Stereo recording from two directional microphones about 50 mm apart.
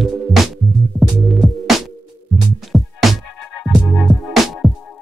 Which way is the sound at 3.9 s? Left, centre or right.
Centre.